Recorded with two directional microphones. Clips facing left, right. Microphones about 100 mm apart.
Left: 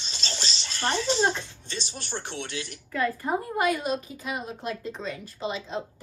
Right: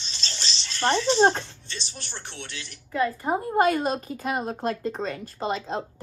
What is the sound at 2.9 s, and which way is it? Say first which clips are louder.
Speech: right 2 dB; 20° right (ahead or behind).